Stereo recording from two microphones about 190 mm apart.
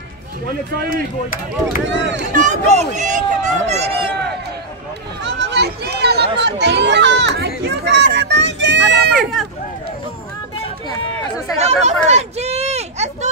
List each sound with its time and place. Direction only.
1.9 s speech: 65° right (ahead or behind)
2.3 s speech: 40° right (ahead or behind)
5.2 s a sound: 65° right (ahead or behind)
9.1 s run: centre (ahead or behind)
11.5 s speech: 35° right (ahead or behind)
12.1 s a sound: 35° right (ahead or behind)